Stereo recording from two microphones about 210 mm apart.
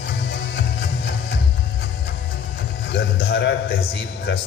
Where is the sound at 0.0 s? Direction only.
55° left (ahead or behind).